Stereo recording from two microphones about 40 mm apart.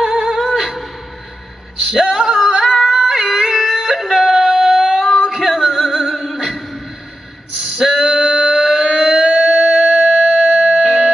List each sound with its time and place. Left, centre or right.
0.0 s music: centre
2.0 s female singing: centre
2.7 s female singing: centre
3.0 s music: centre
3.9 s a sound: centre
5.3 s music: centre
7.9 s a sound: centre
10.1 s music: centre